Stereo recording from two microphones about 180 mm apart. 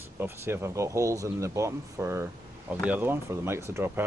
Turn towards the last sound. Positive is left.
turn(degrees=-15)  # may be behind; listen again after turning